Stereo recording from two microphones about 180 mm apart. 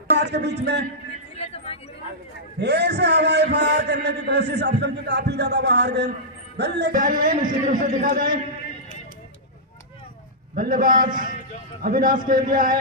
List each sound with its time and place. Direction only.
0.2 s a man's voice: 70° right (ahead or behind)
1.3 s a sound: 35° left (ahead or behind)
2.6 s a man's voice: 70° right (ahead or behind)
6.9 s a man's voice: 50° right (ahead or behind)
10.5 s a man's voice: 50° right (ahead or behind)